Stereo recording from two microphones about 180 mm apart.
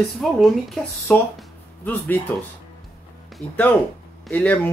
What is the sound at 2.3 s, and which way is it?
Speech, 10° left (ahead or behind).